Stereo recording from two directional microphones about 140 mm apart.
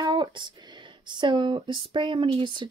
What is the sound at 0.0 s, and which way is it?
Speech, 35° right (ahead or behind).